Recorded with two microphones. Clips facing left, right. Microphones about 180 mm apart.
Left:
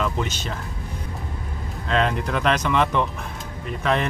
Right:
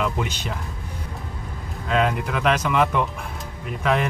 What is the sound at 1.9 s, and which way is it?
Speech, 5° right (ahead or behind).